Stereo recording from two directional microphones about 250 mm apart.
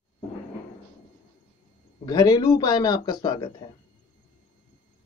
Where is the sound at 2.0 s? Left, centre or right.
Centre.